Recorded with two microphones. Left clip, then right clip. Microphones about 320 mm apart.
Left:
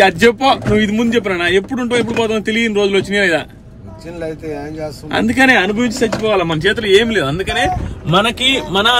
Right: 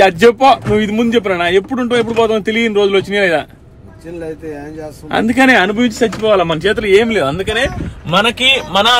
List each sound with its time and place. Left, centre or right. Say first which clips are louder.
0.0 s a man's voice: right 3 dB; centre
5.1 s a man's voice: right 1 dB; centre
8.5 s a man's voice: right 2 dB; centre